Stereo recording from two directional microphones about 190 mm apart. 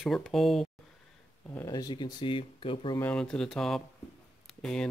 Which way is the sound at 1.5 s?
15° left (ahead or behind).